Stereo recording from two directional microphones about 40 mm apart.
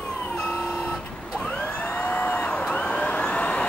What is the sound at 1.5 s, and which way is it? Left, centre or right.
Emergency vehicle, left.